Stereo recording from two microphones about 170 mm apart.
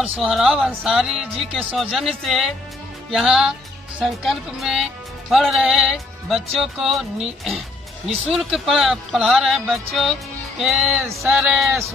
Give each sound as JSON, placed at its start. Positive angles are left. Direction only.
{"t": 0.0, "sound": "music", "side_deg": 0}